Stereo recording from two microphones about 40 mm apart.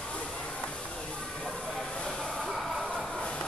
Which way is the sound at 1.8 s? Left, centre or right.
Centre.